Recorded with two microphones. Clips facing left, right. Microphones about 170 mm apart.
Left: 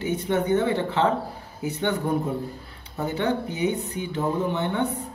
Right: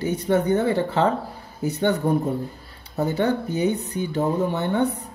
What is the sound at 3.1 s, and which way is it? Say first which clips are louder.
Speech: right 2 dB; 40° right (ahead or behind).